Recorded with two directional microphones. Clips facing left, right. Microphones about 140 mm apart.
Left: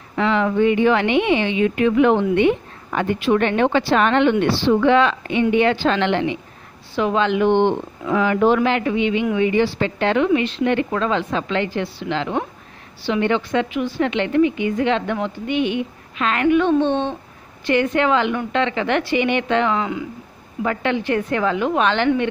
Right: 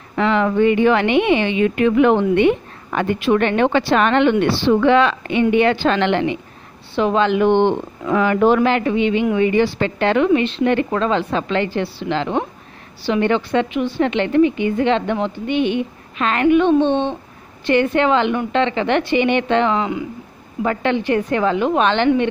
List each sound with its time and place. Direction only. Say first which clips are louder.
0.2 s a woman's voice: right 2 dB; 55° right (ahead or behind)
7.0 s speech: right 2 dB; 40° right (ahead or behind)
8.5 s speech: right 2 dB; 40° right (ahead or behind)
9.5 s speech: right 2 dB; 55° right (ahead or behind)
10.6 s speech: right 2 dB; 40° right (ahead or behind); by 14.1 s 25° right (ahead or behind)
14.1 s a woman's voice: right 2 dB; 35° right (ahead or behind)
16.4 s a woman's voice: right 3 dB; 20° right (ahead or behind)